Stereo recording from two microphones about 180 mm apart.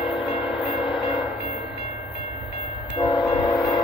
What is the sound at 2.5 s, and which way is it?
Train, 30° left (ahead or behind).